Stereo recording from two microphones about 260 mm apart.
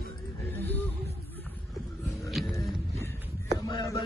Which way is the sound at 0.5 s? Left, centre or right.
Centre.